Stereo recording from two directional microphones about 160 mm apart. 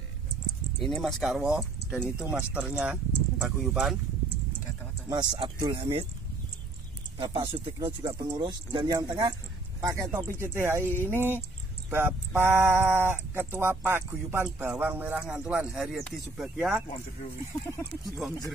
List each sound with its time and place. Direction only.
0.7 s speech: centre (ahead or behind)
5.1 s speech: 25° right (ahead or behind)
7.2 s speech: 25° right (ahead or behind); by 16.8 s 5° right (ahead or behind)
18.0 s speech: centre (ahead or behind)